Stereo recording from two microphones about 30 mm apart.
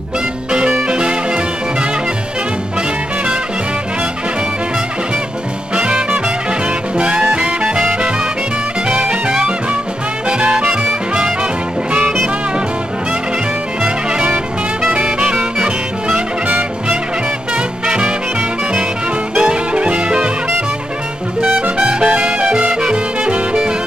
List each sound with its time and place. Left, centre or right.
0.5 s music: right
5.8 s music: right
15.1 s music: right
17.6 s music: right
19.4 s music: right
21.7 s music: right